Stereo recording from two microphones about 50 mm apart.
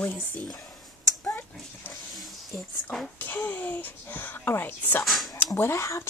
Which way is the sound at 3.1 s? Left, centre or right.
Left.